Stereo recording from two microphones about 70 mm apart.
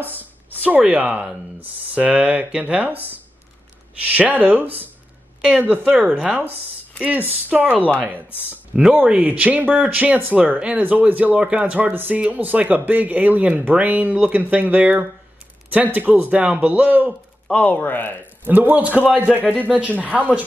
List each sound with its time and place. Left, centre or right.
0.0 s speech: left
0.5 s speech: right
4.1 s speech: right
8.3 s speech: left
8.9 s speech: centre
17.6 s speech: left
18.5 s speech: right
19.4 s speech: left
19.7 s speech: right